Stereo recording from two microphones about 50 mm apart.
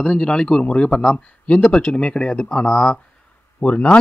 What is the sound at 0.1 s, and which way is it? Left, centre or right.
A man's voice, centre.